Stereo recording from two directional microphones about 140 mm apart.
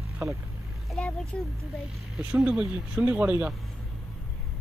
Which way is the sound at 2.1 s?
5° right (ahead or behind).